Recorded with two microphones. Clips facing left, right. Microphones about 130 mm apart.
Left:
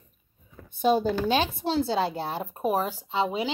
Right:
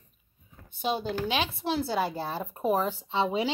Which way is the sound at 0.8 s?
45° left (ahead or behind).